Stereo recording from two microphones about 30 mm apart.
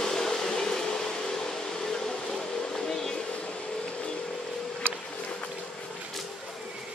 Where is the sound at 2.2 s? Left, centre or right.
Left.